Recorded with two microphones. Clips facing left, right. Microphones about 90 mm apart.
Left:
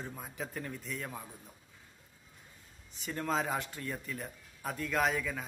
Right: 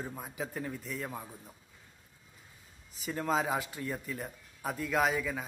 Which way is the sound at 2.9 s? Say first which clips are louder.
Right 2 dB; 5° right (ahead or behind).